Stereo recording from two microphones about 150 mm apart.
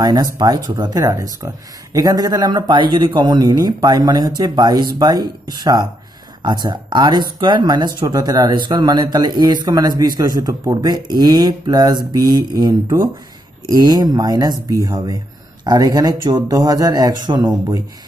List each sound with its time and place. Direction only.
0.0 s speech: 25° right (ahead or behind)